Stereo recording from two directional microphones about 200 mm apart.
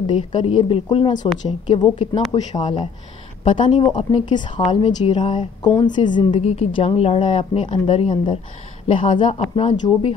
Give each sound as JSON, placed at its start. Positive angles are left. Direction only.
{"t": 0.0, "sound": "speech", "side_deg": 25}